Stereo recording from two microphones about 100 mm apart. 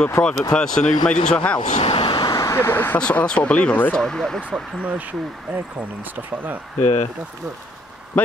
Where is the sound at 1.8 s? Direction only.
65° left (ahead or behind); by 2.3 s 50° left (ahead or behind).